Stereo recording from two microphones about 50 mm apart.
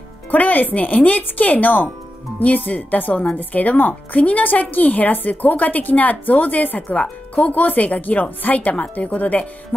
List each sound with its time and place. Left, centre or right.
0.3 s speech: left